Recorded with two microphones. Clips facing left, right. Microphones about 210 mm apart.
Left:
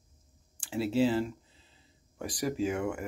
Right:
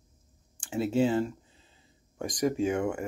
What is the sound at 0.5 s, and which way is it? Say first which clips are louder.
Speech: right 2 dB; 5° left (ahead or behind).